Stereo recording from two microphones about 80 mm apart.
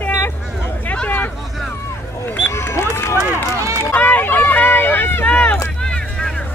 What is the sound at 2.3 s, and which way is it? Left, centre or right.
Speech, left.